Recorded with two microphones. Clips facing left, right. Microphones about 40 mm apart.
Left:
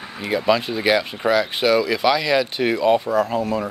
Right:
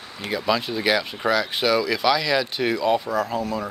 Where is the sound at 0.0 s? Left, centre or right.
Left.